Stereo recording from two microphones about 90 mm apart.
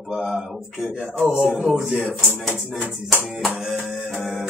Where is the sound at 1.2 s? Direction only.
10° right (ahead or behind).